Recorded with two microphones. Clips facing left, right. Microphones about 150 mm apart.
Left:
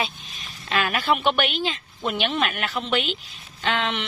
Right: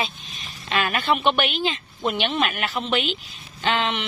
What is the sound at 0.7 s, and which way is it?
A woman's voice, centre (ahead or behind).